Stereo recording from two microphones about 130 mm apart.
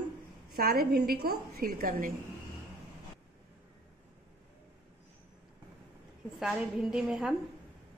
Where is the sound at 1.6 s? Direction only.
90° right.